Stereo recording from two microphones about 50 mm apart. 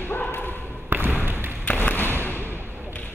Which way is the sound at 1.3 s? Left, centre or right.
Right.